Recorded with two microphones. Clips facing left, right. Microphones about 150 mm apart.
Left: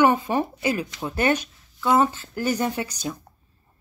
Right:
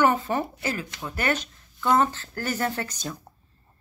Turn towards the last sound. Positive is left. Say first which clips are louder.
# left 2 dB
turn(degrees=10)  # may be behind; listen again after turning